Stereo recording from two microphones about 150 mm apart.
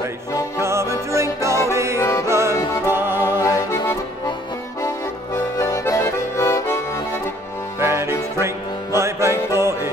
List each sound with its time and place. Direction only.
0.6 s music: 20° right (ahead or behind)
2.0 s music: 20° left (ahead or behind)
2.2 s music: 20° right (ahead or behind)
3.3 s music: 20° left (ahead or behind)
5.3 s accordion: 20° left (ahead or behind)
7.8 s music: 15° right (ahead or behind)